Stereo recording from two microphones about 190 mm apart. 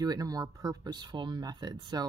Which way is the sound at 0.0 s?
20° right (ahead or behind).